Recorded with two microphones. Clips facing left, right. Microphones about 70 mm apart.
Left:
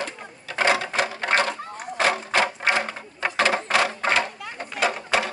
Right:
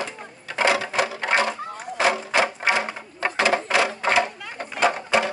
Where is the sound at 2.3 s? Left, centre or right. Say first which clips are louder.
Right 1 dB; centre.